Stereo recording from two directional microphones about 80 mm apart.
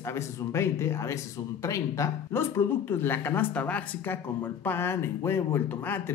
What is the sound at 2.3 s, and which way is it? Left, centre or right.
Speech, left.